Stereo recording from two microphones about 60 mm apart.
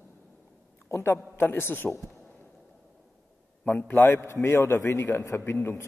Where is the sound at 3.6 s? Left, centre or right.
Left.